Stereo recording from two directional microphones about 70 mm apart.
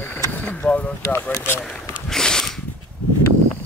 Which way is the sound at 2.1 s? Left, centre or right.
Centre.